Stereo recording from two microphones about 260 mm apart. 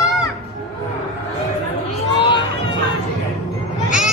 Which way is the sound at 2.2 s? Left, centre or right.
Centre.